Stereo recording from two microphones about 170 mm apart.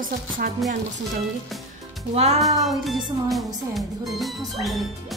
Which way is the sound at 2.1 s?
40° right (ahead or behind).